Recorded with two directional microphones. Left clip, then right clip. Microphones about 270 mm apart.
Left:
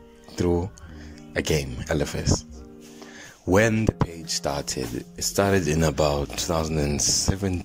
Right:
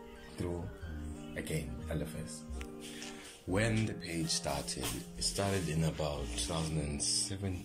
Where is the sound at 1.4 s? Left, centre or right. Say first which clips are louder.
Left 16 dB; left.